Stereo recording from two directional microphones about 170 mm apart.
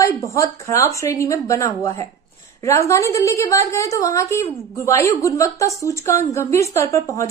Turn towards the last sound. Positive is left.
turn(degrees=20)  # may be behind; listen again after turning